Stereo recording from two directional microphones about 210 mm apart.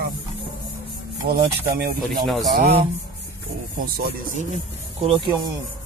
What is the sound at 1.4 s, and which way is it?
Speech, 50° right (ahead or behind).